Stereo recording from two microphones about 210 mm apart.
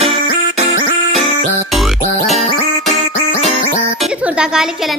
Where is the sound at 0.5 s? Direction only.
30° right (ahead or behind).